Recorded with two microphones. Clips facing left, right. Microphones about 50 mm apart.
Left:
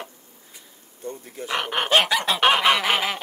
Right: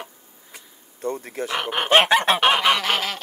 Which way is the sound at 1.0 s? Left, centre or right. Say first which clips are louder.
Right 7 dB; right.